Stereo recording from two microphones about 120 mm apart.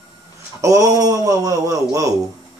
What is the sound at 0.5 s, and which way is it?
A man's voice, 30° right (ahead or behind).